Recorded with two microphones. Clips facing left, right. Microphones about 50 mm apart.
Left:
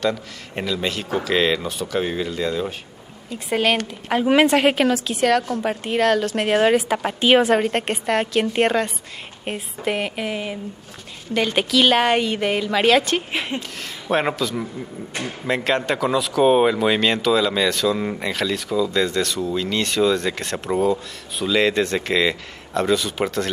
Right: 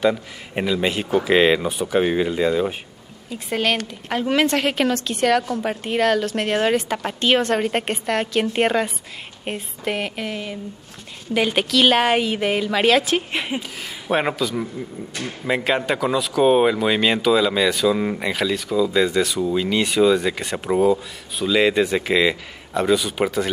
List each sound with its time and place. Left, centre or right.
0.0 s speech: centre
3.3 s speech: centre
11.3 s speech: centre